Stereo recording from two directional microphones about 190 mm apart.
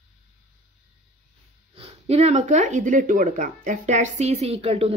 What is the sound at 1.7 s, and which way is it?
Speech, 30° right (ahead or behind).